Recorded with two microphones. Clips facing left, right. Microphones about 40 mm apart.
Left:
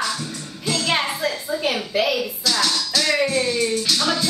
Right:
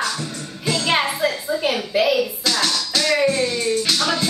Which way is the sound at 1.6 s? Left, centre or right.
Centre.